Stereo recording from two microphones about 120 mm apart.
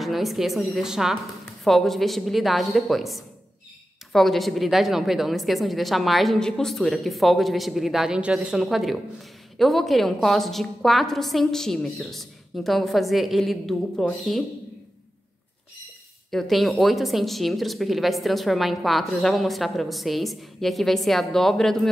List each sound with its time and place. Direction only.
0.0 s a woman's voice: centre (ahead or behind)
16.3 s speech: centre (ahead or behind)